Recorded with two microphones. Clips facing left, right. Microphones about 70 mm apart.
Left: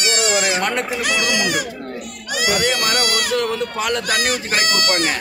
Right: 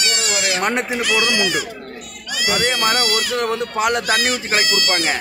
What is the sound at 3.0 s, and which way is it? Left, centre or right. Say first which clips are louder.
Speech: left 1 dB; left.